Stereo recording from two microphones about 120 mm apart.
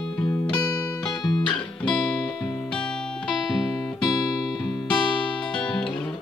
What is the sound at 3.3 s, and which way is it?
Music, centre (ahead or behind).